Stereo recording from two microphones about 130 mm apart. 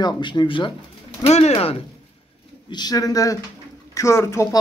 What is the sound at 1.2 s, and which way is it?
Speech, 50° left (ahead or behind).